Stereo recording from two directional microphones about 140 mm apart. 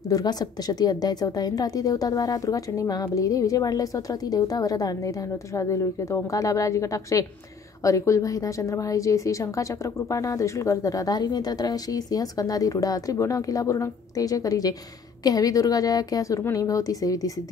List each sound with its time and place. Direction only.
0.1 s a woman's voice: 30° left (ahead or behind)